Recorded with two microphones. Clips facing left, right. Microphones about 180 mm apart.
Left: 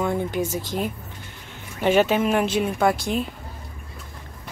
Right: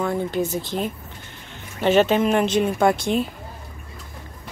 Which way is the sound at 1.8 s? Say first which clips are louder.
Right 2 dB; 10° left (ahead or behind).